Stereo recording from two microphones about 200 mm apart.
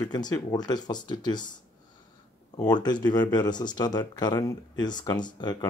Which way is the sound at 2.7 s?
20° left (ahead or behind).